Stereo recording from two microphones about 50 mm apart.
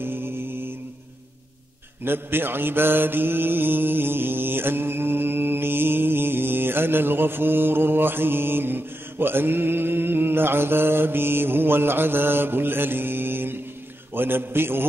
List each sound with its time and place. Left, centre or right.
0.0 s mantra: right
2.0 s mantra: right